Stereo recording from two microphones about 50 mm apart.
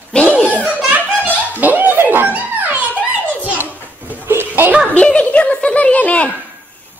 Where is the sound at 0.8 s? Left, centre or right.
Right.